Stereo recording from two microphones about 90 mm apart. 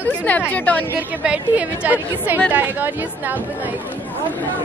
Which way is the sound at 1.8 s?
20° right (ahead or behind).